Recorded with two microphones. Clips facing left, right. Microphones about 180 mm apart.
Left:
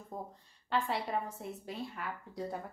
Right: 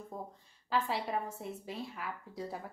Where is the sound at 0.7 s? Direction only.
Centre (ahead or behind).